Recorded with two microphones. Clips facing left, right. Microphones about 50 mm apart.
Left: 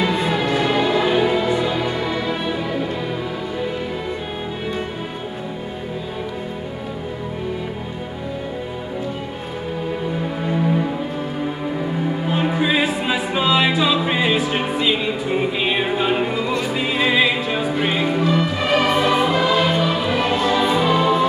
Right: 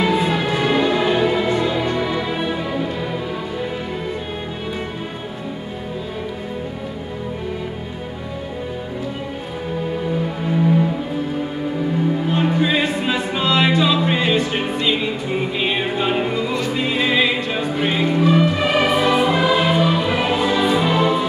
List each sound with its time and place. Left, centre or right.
0.0 s music: centre
12.3 s music: centre